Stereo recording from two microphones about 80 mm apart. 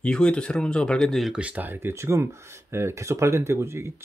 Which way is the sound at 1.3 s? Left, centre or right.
Centre.